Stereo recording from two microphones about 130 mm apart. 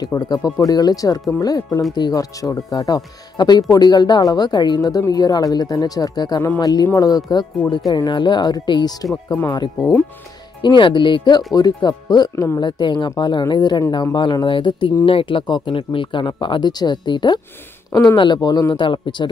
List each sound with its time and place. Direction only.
0.0 s speech: 30° left (ahead or behind)
9.1 s speech: 15° left (ahead or behind)
10.6 s speech: 35° left (ahead or behind)